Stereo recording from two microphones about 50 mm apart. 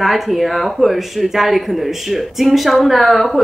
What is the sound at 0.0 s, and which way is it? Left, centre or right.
Speech, centre.